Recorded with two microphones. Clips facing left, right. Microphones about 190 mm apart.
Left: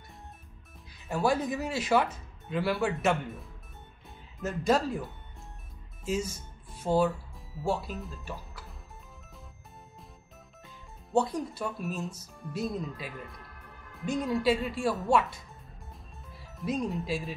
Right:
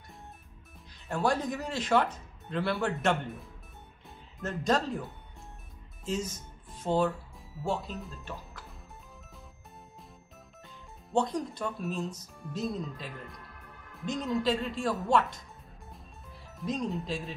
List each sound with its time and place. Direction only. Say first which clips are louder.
1.0 s speech: left 1 dB; 5° left (ahead or behind)
6.0 s speech: left 2 dB; 10° left (ahead or behind)
11.1 s speech: left 1 dB; 5° left (ahead or behind)
16.5 s speech: left 1 dB; 10° left (ahead or behind)